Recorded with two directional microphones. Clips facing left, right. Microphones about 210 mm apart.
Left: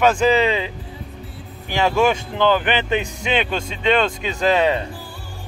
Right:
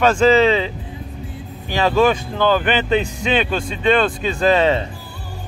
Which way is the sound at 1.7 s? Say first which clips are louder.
Right 2 dB; 10° left (ahead or behind).